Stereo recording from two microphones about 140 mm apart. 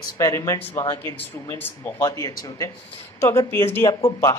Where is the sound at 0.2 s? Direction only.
25° left (ahead or behind).